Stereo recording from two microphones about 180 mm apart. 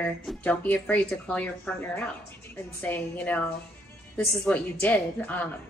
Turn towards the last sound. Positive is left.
turn(degrees=10)  # may be behind; listen again after turning